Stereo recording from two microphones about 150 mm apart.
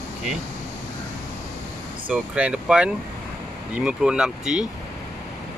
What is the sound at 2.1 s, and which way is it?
Speech, 5° right (ahead or behind).